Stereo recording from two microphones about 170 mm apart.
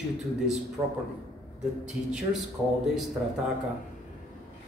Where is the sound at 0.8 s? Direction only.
20° right (ahead or behind).